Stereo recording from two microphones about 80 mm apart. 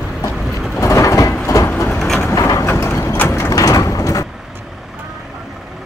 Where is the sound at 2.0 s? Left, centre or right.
Centre.